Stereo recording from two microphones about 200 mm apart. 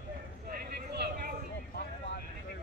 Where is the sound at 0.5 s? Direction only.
50° right (ahead or behind).